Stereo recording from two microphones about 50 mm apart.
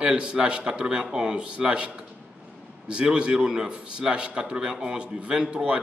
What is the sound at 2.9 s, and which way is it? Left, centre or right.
A man's voice, centre.